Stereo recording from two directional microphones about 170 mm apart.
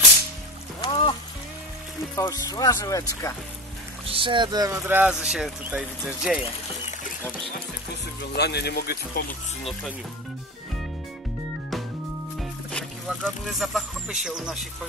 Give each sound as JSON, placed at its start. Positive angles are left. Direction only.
{"t": 0.7, "sound": "music", "side_deg": 30}
{"t": 2.1, "sound": "speech", "side_deg": 20}
{"t": 4.0, "sound": "speech", "side_deg": -30}
{"t": 8.4, "sound": "speech", "side_deg": 75}
{"t": 12.4, "sound": "music", "side_deg": 0}
{"t": 14.2, "sound": "speech", "side_deg": -5}